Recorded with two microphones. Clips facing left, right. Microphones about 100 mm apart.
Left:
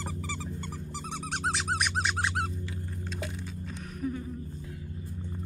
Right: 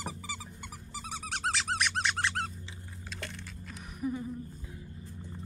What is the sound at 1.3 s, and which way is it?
Squeak, centre (ahead or behind).